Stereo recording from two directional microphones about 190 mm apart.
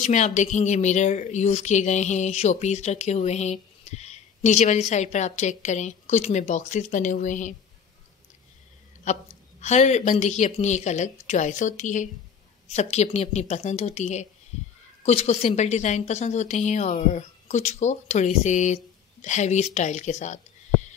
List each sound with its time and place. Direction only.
0.0 s a woman's voice: 40° left (ahead or behind)
9.0 s a woman's voice: 35° left (ahead or behind)